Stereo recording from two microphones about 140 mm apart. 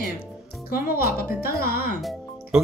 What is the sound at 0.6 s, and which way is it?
Speech, 90° left.